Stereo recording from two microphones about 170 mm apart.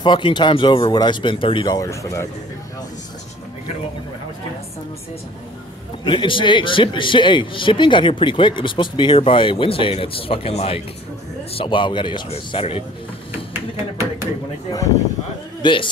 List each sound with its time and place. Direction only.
0.0 s a man's voice: 25° left (ahead or behind)
6.0 s a man's voice: 30° left (ahead or behind)
13.5 s speech: 15° right (ahead or behind)
15.6 s a man's voice: 30° left (ahead or behind)